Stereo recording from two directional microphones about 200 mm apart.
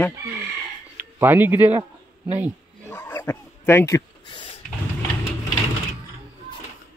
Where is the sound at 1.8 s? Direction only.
35° right (ahead or behind).